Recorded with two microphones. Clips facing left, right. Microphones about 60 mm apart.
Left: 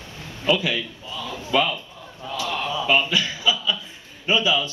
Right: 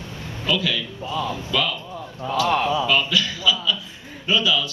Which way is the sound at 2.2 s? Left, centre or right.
Centre.